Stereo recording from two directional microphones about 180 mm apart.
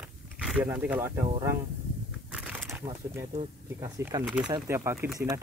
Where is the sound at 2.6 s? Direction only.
15° right (ahead or behind).